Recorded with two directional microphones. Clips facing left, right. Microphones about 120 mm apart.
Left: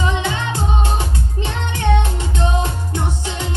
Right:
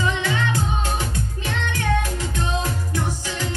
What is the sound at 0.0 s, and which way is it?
Music, 25° left (ahead or behind).